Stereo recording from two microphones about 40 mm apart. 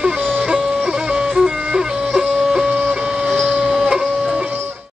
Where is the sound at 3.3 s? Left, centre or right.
Centre.